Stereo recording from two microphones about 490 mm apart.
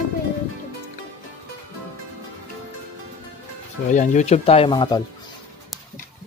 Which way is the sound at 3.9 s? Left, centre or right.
Centre.